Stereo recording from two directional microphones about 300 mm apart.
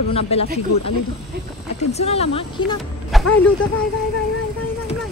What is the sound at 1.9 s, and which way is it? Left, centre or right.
Speech, left.